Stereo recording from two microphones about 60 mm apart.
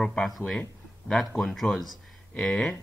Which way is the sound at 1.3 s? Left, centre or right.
Centre.